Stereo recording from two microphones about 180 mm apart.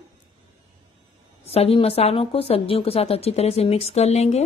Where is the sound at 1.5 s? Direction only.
35° left (ahead or behind).